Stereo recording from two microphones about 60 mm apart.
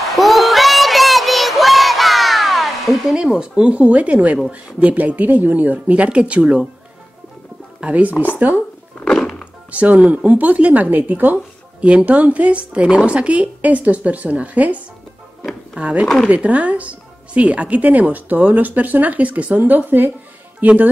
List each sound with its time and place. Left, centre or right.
0.1 s child singing: centre
3.2 s speech: centre
7.8 s speech: right
11.3 s speech: centre
15.8 s speech: right